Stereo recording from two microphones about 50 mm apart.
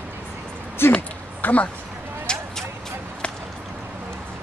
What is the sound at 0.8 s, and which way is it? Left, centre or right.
Speech, left.